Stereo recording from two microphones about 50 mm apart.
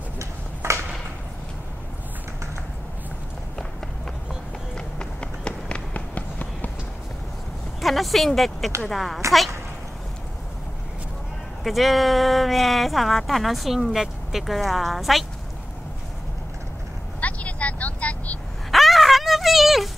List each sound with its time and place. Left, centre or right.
0.2 s a sound: right
4.7 s run: centre
7.8 s speech: centre
11.6 s speech: centre
17.2 s vehicle: left
18.7 s dog: centre